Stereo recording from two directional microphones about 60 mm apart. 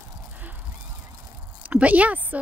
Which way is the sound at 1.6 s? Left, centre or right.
Right.